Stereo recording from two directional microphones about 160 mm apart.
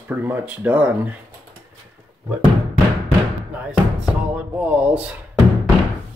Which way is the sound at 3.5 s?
10° right (ahead or behind).